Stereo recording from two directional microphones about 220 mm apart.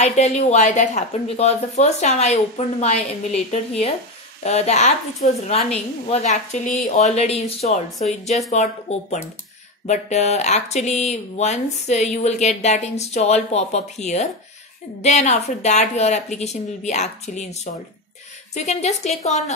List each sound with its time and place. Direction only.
0.0 s speech: 30° left (ahead or behind)
4.4 s speech: 30° left (ahead or behind)